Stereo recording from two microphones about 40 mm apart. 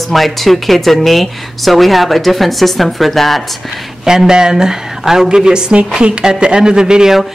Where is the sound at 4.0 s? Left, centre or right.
Centre.